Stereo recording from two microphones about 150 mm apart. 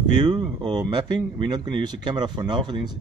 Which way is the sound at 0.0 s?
30° right (ahead or behind).